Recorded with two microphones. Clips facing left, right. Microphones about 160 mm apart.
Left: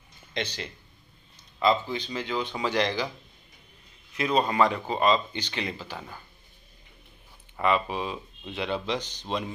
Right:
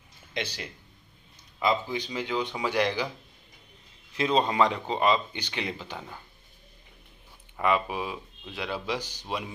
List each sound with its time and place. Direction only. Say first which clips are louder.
0.3 s speech: left 1 dB; 10° right (ahead or behind)
4.1 s speech: even; 25° right (ahead or behind)
7.6 s speech: left 1 dB; 10° right (ahead or behind)